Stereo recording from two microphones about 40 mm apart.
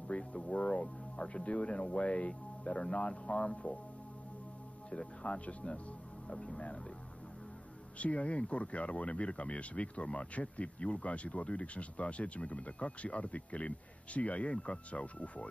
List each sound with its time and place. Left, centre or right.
0.1 s speech: left
4.9 s speech: left
8.0 s speech: left